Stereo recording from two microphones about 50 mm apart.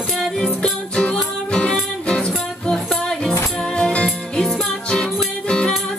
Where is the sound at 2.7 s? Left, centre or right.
Centre.